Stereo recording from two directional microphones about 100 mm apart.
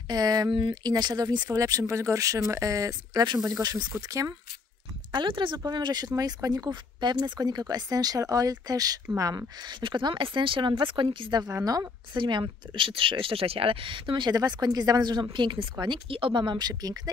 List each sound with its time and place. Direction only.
0.1 s speech: 40° right (ahead or behind)
5.1 s speech: 50° right (ahead or behind)
9.6 s speech: 50° right (ahead or behind)
11.6 s speech: 35° right (ahead or behind)
12.1 s speech: 50° right (ahead or behind)